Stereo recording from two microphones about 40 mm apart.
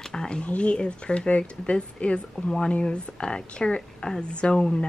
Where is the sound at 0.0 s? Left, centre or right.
Centre.